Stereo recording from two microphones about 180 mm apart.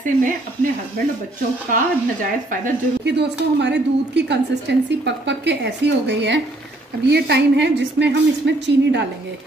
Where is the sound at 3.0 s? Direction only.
70° right (ahead or behind).